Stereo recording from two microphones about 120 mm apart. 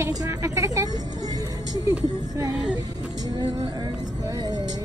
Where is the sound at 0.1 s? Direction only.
25° right (ahead or behind).